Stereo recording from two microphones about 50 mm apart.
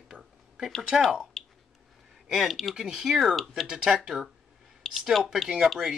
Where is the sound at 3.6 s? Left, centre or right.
Centre.